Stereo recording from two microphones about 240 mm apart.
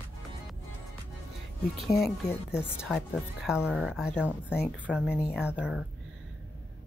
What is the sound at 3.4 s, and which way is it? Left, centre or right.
Speech, centre.